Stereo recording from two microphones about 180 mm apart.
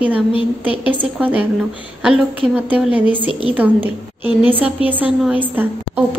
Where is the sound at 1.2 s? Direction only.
10° right (ahead or behind).